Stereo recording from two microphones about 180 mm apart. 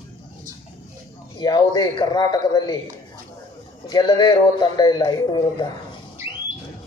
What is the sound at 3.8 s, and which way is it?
A man's voice, 25° left (ahead or behind).